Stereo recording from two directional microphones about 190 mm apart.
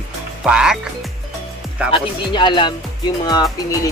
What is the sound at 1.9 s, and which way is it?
Speech, 25° left (ahead or behind).